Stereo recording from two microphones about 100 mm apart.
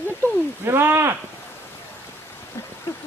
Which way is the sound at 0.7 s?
25° right (ahead or behind).